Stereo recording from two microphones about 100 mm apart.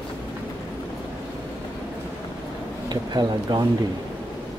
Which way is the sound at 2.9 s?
45° right (ahead or behind).